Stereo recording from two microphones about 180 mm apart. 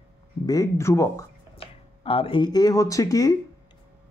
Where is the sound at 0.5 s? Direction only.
20° left (ahead or behind).